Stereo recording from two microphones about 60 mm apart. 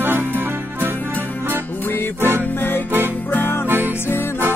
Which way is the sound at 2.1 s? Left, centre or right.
Right.